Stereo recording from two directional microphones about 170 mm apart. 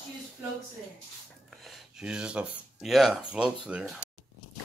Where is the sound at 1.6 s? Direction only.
5° right (ahead or behind).